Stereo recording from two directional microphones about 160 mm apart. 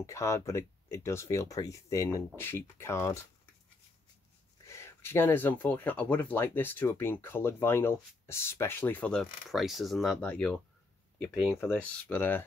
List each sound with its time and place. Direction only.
0.0 s speech: 20° left (ahead or behind)
4.6 s speech: 15° left (ahead or behind)
11.3 s speech: 5° right (ahead or behind)
11.6 s speech: 10° left (ahead or behind)